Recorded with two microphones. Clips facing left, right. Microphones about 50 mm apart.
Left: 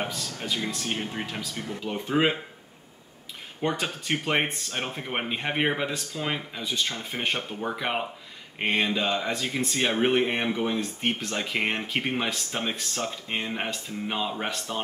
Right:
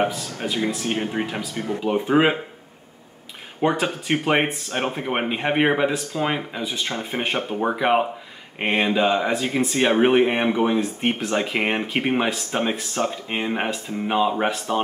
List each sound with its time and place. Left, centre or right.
0.0 s speech: centre
3.6 s speech: centre